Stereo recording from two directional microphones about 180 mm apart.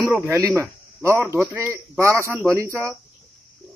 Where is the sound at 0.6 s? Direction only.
15° right (ahead or behind).